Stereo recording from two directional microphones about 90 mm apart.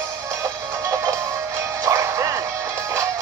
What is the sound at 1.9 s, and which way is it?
Music, 35° right (ahead or behind).